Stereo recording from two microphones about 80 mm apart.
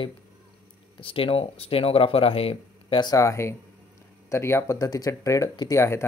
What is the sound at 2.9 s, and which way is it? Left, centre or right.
Speech, left.